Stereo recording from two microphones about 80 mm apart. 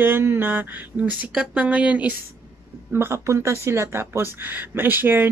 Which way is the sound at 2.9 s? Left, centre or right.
Right.